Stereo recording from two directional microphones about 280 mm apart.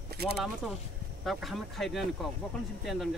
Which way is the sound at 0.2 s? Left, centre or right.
Right.